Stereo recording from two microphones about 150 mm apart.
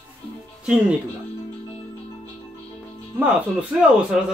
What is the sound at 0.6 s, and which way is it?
Speech, 10° right (ahead or behind).